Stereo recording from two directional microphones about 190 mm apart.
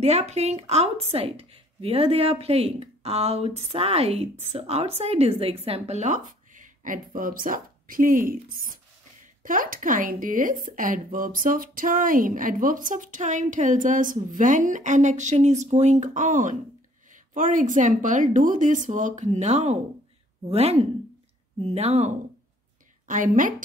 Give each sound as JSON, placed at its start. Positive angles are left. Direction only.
{"t": 0.0, "sound": "a woman's voice", "side_deg": -35}